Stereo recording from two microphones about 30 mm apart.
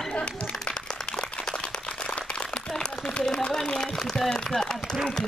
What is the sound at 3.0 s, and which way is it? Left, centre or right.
Speech, left.